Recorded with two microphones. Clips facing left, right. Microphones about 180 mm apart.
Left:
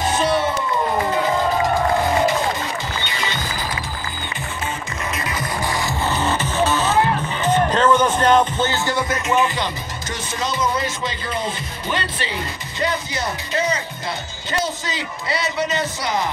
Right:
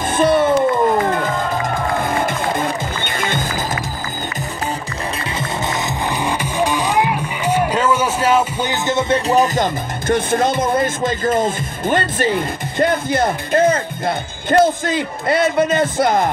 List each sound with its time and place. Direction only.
0.1 s a sound: 55° right (ahead or behind)
2.0 s music: 50° right (ahead or behind)
6.2 s music: 15° right (ahead or behind)
9.3 s speech: 40° right (ahead or behind)
10.0 s speech: 55° right (ahead or behind)